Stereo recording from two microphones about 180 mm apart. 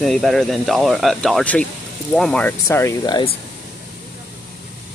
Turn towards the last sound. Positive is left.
turn(degrees=25)  # may be behind; listen again after turning